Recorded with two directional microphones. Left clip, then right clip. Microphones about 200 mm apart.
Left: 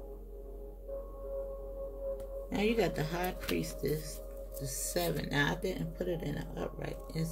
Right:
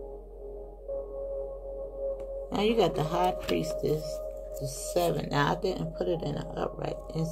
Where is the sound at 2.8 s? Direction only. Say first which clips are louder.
Right 8 dB; 25° left (ahead or behind).